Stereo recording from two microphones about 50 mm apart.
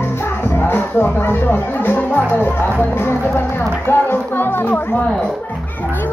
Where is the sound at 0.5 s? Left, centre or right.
Left.